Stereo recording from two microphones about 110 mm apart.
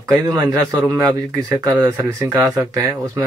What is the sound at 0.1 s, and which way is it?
A man's voice, 35° right (ahead or behind).